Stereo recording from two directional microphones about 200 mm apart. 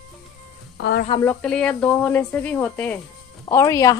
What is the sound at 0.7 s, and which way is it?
Speech, 65° left (ahead or behind).